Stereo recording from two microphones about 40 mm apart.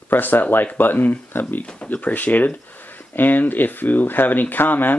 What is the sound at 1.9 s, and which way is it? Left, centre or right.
Speech, left.